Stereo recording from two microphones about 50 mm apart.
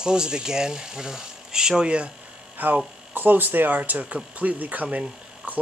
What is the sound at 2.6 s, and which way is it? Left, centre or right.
Speech, right.